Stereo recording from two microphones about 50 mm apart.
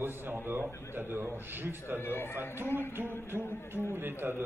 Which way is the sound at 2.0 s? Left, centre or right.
Left.